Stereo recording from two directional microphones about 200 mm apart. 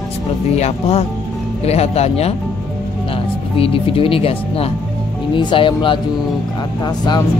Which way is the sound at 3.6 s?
25° left (ahead or behind).